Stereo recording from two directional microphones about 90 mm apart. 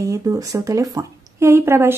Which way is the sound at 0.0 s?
35° right (ahead or behind).